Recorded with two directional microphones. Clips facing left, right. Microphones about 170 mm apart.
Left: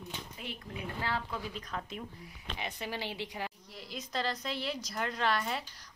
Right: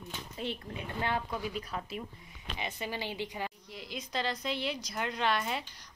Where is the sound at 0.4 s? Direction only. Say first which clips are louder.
Right 8 dB; 30° right (ahead or behind).